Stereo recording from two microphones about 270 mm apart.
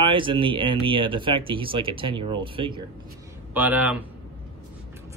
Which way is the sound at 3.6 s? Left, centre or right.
Centre.